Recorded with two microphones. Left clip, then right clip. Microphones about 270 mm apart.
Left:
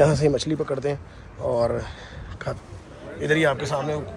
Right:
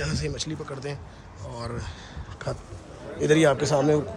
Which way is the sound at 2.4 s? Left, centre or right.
Centre.